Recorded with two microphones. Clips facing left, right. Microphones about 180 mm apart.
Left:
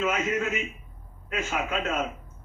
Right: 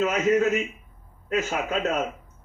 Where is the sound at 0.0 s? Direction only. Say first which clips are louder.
Right 6 dB; 40° right (ahead or behind).